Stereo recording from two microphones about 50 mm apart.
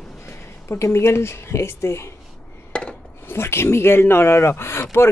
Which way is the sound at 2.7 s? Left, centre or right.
Left.